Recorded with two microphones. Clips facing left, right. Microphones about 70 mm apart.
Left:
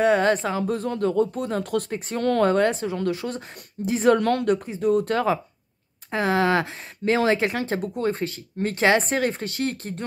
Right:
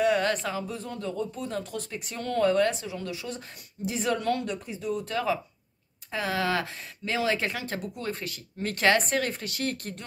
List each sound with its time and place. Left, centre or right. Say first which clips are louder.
0.0 s speech: left 5 dB; left
0.6 s speech: left 10 dB; left
1.9 s speech: left 8 dB; left
2.2 s speech: left 5 dB; left
2.5 s speech: left 4 dB; left
4.6 s speech: left 10 dB; left